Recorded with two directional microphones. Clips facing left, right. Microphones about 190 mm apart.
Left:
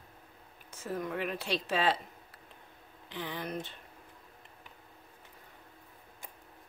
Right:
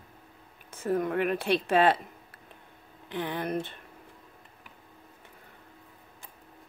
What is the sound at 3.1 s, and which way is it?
Speech, 60° right (ahead or behind).